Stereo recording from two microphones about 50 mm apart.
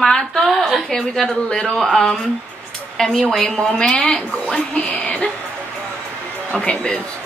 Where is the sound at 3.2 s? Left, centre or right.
Centre.